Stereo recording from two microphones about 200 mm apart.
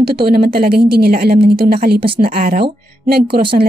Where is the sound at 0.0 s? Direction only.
50° right (ahead or behind).